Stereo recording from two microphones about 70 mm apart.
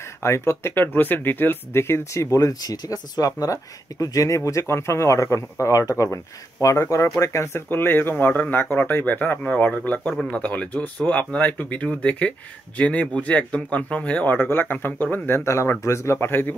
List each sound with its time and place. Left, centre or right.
0.2 s speech: left
2.3 s speech: left
4.5 s speech: left
7.7 s speech: left